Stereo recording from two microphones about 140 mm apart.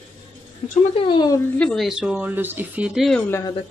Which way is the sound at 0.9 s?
35° left (ahead or behind).